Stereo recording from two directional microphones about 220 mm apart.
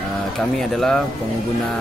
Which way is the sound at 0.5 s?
Centre (ahead or behind).